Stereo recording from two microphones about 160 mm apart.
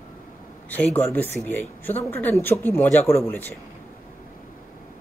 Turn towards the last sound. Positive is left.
turn(degrees=15)  # may be behind; listen again after turning